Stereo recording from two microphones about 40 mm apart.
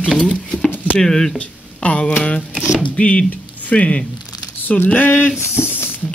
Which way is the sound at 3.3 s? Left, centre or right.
Left.